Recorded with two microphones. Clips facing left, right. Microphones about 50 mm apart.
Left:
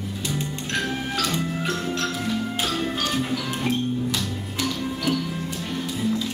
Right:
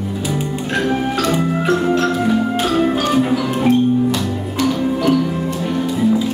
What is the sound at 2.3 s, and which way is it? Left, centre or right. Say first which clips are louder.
Music: right 10 dB; centre.